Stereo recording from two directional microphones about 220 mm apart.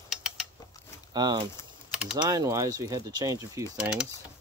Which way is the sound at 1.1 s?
20° right (ahead or behind).